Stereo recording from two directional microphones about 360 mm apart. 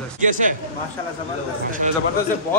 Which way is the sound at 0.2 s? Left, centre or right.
Right.